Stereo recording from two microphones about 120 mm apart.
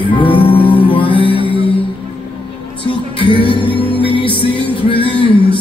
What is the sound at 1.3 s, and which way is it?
Music, 45° right (ahead or behind).